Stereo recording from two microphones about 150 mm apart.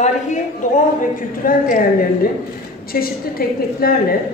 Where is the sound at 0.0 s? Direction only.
55° left (ahead or behind).